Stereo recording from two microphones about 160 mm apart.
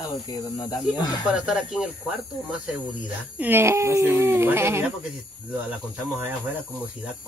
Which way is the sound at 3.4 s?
15° right (ahead or behind).